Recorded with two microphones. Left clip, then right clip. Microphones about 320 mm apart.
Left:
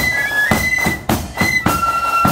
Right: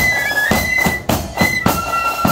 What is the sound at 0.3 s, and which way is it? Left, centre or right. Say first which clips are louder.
Music: even; right.